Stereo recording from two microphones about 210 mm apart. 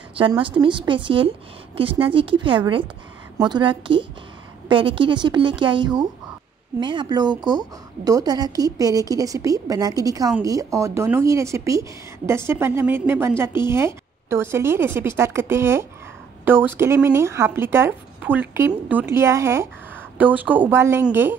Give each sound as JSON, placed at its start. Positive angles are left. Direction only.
{"t": 0.1, "sound": "a woman's voice", "side_deg": -25}